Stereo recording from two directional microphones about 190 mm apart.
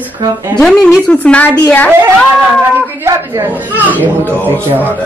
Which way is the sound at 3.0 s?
10° right (ahead or behind).